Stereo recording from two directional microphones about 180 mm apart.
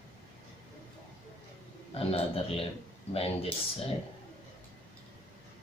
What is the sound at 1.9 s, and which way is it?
Speech, 30° left (ahead or behind).